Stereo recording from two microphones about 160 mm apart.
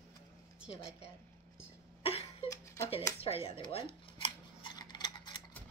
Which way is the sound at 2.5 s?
20° left (ahead or behind).